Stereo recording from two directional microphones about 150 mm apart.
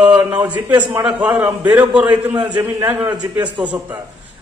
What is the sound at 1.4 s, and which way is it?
Speech, 25° right (ahead or behind).